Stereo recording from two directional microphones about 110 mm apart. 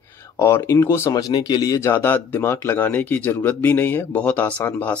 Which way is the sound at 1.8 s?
20° left (ahead or behind).